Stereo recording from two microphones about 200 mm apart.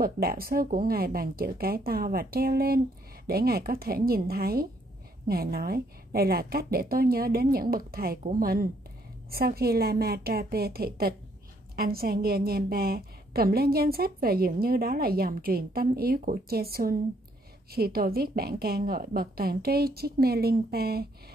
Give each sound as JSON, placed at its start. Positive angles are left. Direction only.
{"t": 0.0, "sound": "a woman's voice", "side_deg": -50}